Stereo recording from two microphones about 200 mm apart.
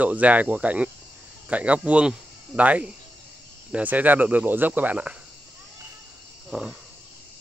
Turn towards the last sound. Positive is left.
turn(degrees=-5)  # may be behind; listen again after turning